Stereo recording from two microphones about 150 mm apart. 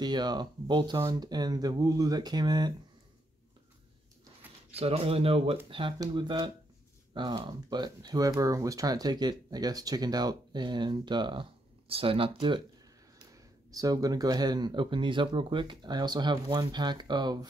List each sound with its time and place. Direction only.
0.0 s speech: 30° right (ahead or behind)
4.7 s speech: 40° right (ahead or behind)
13.3 s speech: 25° right (ahead or behind)